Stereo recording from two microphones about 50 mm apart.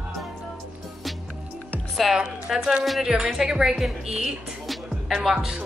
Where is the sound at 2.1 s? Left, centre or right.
Centre.